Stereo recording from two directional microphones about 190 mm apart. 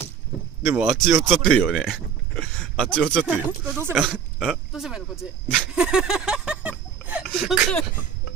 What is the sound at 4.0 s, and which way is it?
Speech, centre (ahead or behind).